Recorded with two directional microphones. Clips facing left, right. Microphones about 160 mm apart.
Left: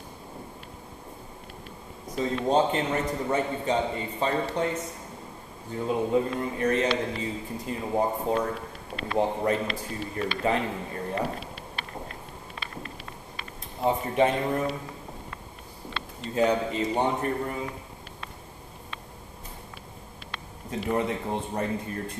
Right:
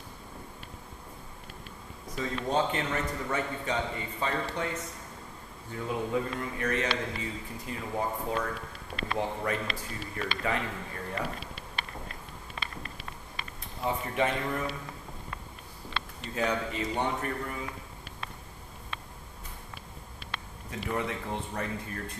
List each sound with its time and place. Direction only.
2.1 s speech: 30° left (ahead or behind)
13.8 s speech: 25° left (ahead or behind)
16.3 s speech: 25° left (ahead or behind)
20.7 s speech: 25° left (ahead or behind)